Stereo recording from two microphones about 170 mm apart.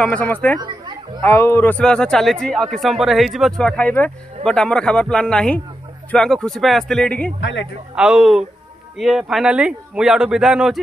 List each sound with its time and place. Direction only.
0.0 s speech: 10° left (ahead or behind)
0.6 s a sound: 25° right (ahead or behind)
1.2 s speech: 15° left (ahead or behind)
7.3 s speech: 90° left
7.9 s speech: 5° right (ahead or behind)